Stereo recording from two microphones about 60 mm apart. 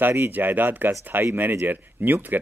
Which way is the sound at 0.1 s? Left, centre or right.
Right.